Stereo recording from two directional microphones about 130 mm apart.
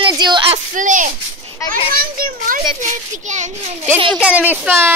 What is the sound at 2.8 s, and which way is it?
Speech, 70° right (ahead or behind).